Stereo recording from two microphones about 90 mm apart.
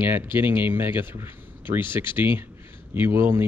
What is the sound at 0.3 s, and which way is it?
Speech, 60° left (ahead or behind).